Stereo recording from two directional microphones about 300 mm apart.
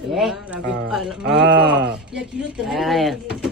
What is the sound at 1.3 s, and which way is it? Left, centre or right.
Speech, right.